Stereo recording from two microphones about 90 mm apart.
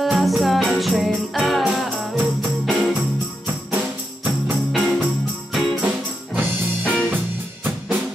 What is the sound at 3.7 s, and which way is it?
Music, 20° right (ahead or behind).